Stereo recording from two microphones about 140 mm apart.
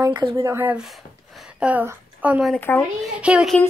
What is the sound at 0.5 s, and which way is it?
Speech, 15° right (ahead or behind).